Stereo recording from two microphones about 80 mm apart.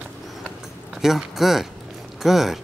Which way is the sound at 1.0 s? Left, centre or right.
Centre.